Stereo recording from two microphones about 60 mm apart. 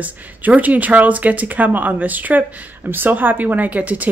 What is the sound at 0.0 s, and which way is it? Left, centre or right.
Speech, right.